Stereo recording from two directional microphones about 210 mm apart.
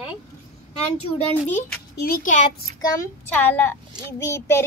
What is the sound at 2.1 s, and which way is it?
Speech, 40° left (ahead or behind).